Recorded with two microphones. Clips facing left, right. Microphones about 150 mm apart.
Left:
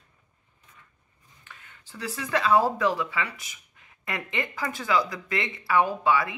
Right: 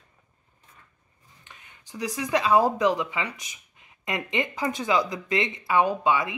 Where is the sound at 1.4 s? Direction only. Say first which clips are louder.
Left 1 dB; 20° right (ahead or behind).